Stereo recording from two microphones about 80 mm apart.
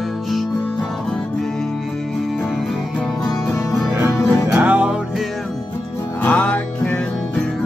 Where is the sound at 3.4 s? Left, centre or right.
Left.